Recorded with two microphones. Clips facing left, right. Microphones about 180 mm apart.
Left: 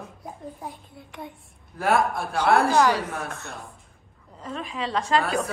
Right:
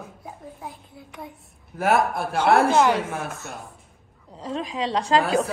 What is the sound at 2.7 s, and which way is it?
Speech, 20° right (ahead or behind).